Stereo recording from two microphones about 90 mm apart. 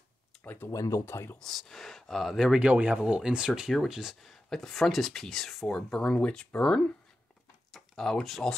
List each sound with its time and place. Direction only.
0.4 s speech: 20° left (ahead or behind)
0.7 s speech: 35° left (ahead or behind)
1.4 s speech: centre (ahead or behind)
2.6 s speech: 15° right (ahead or behind); by 8.5 s 5° left (ahead or behind)